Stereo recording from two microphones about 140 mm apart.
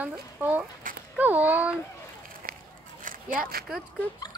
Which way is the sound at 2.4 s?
90° right.